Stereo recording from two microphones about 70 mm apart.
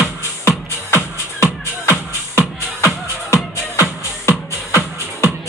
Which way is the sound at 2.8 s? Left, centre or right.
Left.